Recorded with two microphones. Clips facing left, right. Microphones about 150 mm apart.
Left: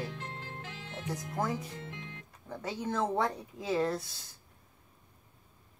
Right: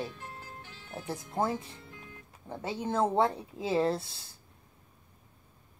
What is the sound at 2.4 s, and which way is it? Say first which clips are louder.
Speech: right 2 dB; 25° right (ahead or behind).